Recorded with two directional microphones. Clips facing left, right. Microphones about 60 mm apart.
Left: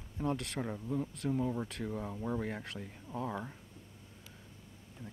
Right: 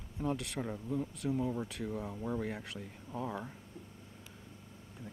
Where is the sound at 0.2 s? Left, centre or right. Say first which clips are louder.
Left 1 dB; centre.